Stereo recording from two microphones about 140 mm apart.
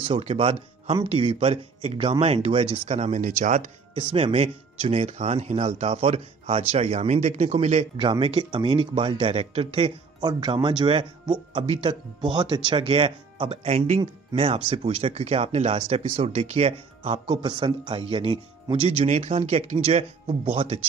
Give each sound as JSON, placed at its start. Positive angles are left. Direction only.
{"t": 0.0, "sound": "speech", "side_deg": -45}
{"t": 3.9, "sound": "speech", "side_deg": -45}
{"t": 8.0, "sound": "speech", "side_deg": -40}